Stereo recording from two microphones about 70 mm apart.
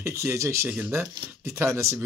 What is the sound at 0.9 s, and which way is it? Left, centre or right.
Speech, right.